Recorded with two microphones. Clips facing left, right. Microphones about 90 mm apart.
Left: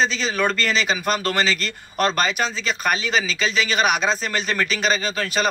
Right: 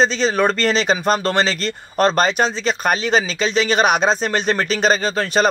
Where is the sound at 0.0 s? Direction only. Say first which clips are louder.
Right 5 dB; 40° right (ahead or behind).